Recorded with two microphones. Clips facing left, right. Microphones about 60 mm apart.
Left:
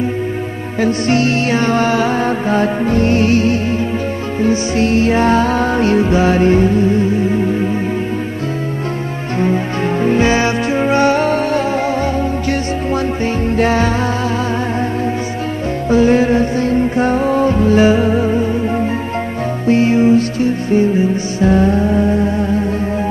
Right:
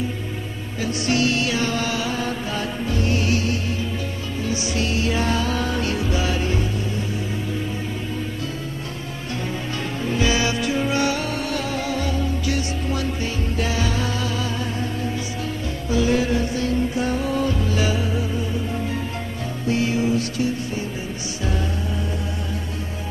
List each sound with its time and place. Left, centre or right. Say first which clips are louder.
0.7 s music: left 8 dB; left
10.0 s music: left 7 dB; left
15.9 s music: left 9 dB; left